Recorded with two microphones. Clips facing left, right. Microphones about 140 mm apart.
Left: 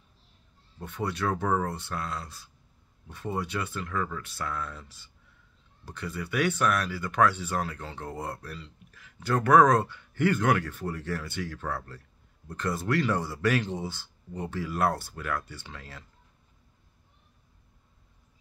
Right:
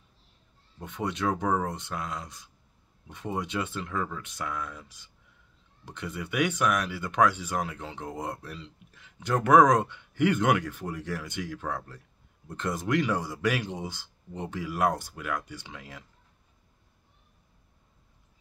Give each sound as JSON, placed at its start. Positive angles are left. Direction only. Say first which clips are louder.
{"t": 0.7, "sound": "speech", "louder": "even", "side_deg": -20}